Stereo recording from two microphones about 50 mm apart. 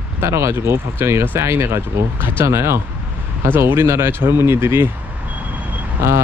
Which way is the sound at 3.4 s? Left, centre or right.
Right.